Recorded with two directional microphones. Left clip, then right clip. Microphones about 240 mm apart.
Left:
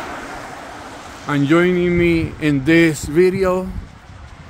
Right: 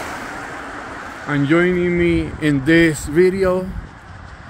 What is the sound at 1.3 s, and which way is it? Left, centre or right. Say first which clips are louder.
Speech: left 1 dB; centre.